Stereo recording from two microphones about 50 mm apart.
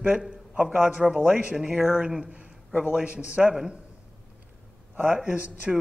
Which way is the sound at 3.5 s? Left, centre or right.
Centre.